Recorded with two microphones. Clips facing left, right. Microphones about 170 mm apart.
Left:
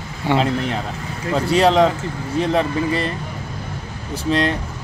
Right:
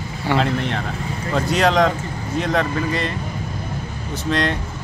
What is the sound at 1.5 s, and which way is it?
Speech, 30° left (ahead or behind).